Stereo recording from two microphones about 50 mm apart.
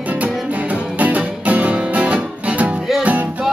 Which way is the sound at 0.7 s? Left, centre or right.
Right.